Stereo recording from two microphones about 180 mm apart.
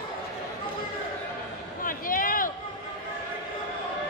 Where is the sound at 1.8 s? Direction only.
50° left (ahead or behind).